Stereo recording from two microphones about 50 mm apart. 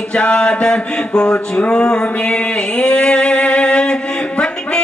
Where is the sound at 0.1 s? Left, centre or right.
Left.